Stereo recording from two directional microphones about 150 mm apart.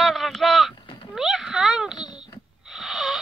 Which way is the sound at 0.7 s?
30° left (ahead or behind).